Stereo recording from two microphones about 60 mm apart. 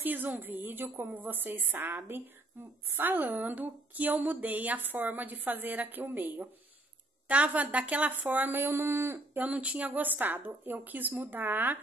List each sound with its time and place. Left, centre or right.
0.0 s a woman's voice: right
9.4 s speech: right